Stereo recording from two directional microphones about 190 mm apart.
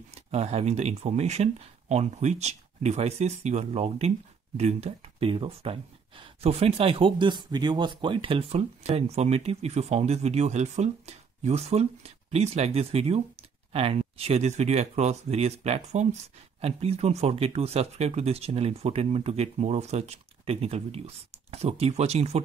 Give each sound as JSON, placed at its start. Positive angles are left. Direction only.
{"t": 0.1, "sound": "speech", "side_deg": -35}